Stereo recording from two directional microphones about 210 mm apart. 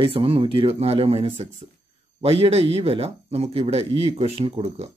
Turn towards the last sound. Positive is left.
turn(degrees=-30)  # may be behind; listen again after turning